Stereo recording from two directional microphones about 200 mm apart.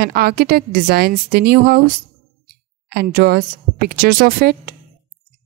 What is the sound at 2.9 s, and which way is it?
Speech, 50° right (ahead or behind).